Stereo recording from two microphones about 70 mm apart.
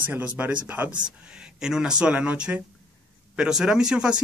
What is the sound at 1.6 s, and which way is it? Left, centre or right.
Speech, centre.